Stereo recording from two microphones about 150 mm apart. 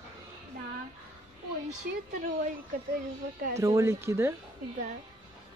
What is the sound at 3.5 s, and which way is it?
Speech, 20° right (ahead or behind).